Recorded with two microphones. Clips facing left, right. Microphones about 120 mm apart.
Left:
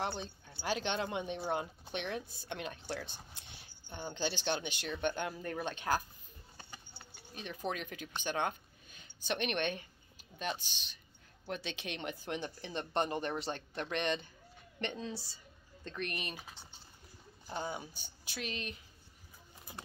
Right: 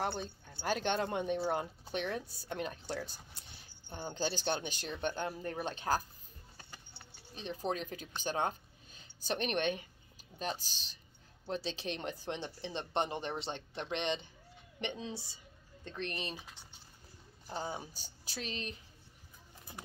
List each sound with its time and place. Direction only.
0.2 s speech: 45° right (ahead or behind)
6.9 s a sound: 30° right (ahead or behind)
10.4 s a woman's voice: 35° right (ahead or behind)
17.6 s speech: 30° right (ahead or behind)